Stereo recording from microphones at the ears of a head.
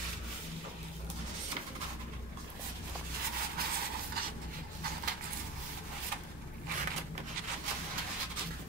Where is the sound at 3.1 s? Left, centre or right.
Right.